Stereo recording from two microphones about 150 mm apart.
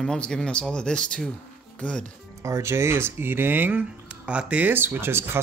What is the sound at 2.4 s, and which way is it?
Speech, 20° right (ahead or behind).